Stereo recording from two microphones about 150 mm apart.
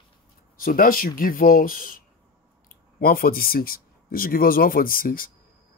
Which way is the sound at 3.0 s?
75° left (ahead or behind).